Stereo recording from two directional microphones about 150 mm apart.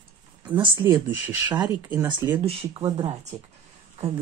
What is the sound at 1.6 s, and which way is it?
Speech, 20° right (ahead or behind).